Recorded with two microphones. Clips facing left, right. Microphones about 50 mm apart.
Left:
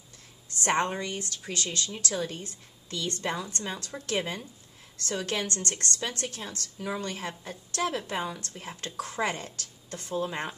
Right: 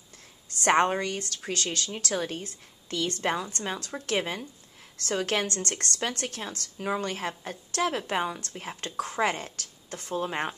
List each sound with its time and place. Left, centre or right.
0.6 s a woman's voice: right
1.0 s speech: right
4.0 s a woman's voice: right